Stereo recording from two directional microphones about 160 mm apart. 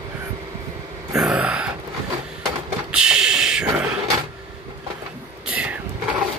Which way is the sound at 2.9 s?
5° right (ahead or behind).